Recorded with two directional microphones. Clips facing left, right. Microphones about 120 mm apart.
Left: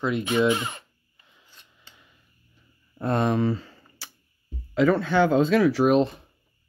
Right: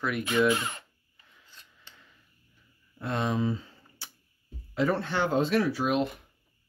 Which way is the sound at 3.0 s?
50° left (ahead or behind).